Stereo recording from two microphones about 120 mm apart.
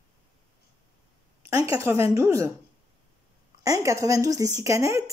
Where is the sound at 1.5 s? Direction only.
25° right (ahead or behind).